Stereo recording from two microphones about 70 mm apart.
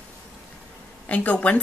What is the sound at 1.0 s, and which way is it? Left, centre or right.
Speech, centre.